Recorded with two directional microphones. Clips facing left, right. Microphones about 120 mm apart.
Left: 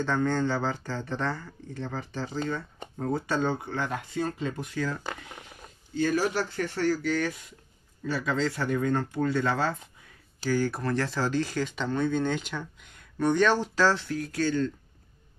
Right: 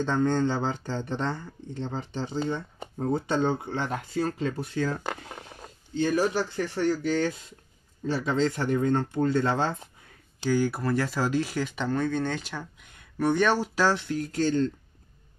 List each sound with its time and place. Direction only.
0.0 s speech: 20° right (ahead or behind)
10.4 s speech: 15° right (ahead or behind)